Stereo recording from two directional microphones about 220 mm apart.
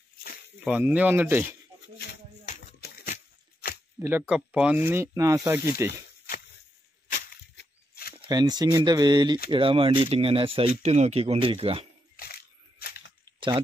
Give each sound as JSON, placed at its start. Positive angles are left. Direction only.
{"t": 0.7, "sound": "speech", "side_deg": -5}
{"t": 4.0, "sound": "speech", "side_deg": -10}
{"t": 7.5, "sound": "a sound", "side_deg": 45}
{"t": 8.3, "sound": "speech", "side_deg": -20}
{"t": 12.2, "sound": "camera", "side_deg": 45}